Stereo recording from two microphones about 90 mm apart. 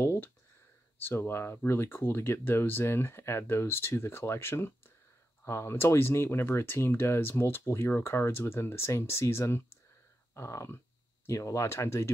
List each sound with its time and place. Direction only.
0.0 s speech: 25° left (ahead or behind)